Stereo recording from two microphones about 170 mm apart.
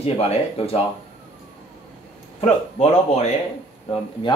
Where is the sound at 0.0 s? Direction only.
35° left (ahead or behind).